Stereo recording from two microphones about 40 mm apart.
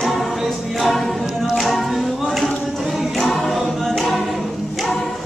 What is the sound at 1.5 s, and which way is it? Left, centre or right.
Music, centre.